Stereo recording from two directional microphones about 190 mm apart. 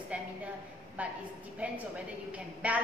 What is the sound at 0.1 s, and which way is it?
A woman's voice, 5° right (ahead or behind).